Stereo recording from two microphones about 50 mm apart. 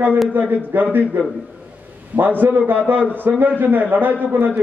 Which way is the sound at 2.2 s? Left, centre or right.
Right.